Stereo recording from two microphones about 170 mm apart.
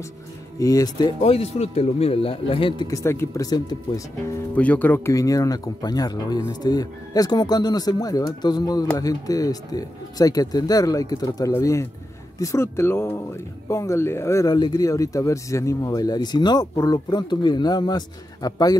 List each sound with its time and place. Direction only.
0.6 s speech: 20° left (ahead or behind)
2.9 s speech: 15° left (ahead or behind)
4.6 s speech: 10° left (ahead or behind)